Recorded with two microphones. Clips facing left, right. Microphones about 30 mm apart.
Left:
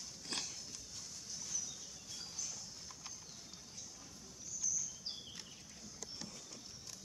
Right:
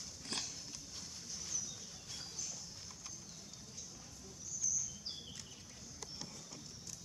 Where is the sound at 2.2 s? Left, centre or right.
Centre.